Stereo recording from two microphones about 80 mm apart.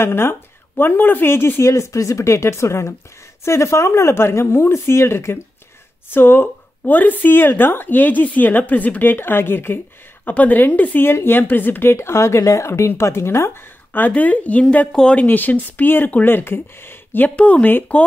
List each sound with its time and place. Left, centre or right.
0.0 s a woman's voice: left; by 15.2 s centre
15.2 s speech: left
17.4 s speech: centre